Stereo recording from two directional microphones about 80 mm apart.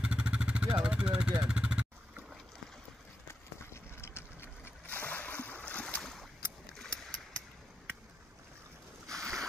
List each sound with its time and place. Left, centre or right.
0.0 s vehicle: centre
3.7 s boat: left
6.8 s a sound: centre
9.0 s boat: centre